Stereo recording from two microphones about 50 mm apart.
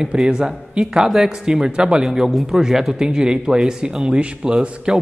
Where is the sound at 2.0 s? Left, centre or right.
Centre.